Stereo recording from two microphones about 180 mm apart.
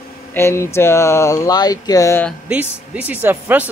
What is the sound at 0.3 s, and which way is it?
Speech, 15° left (ahead or behind).